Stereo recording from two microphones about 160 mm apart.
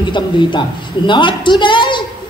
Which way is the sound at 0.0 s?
30° left (ahead or behind).